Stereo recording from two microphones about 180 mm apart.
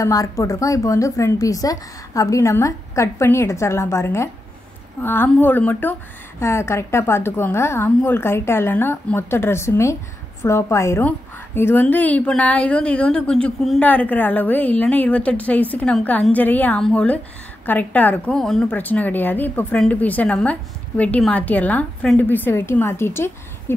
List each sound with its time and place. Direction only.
0.0 s a woman's voice: 20° left (ahead or behind)